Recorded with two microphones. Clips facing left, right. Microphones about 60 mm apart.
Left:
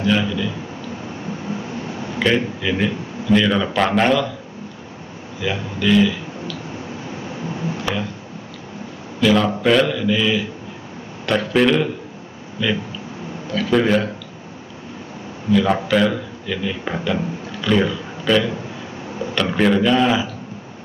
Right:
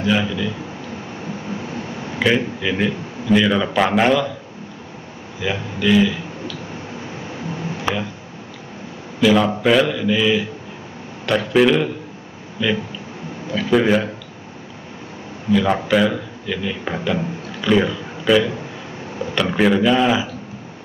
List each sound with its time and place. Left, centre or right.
0.0 s a man's voice: centre
2.1 s a man's voice: centre
5.4 s speech: centre
7.9 s speech: right
9.2 s a man's voice: centre
15.5 s a man's voice: centre